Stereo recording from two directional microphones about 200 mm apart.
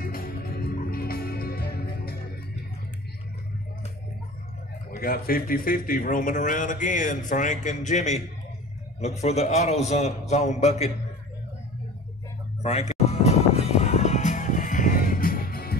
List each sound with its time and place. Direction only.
0.0 s music: 45° left (ahead or behind)
4.9 s a man's voice: 45° left (ahead or behind); by 10.9 s 30° left (ahead or behind)
12.6 s music: 35° left (ahead or behind)